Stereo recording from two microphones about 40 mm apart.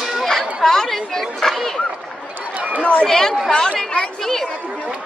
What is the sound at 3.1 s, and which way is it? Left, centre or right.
Speech, centre.